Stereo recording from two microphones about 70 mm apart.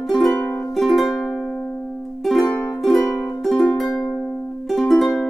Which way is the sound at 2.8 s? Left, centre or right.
Centre.